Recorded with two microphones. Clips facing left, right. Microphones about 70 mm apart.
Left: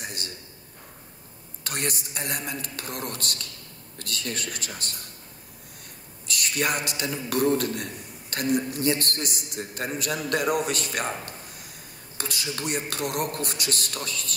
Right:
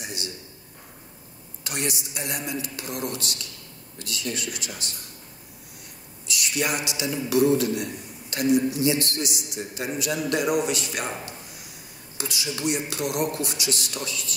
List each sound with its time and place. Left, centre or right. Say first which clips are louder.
0.0 s a man's voice: right 1 dB; left
1.6 s a man's voice: right 1 dB; left
6.2 s a man's voice: even; left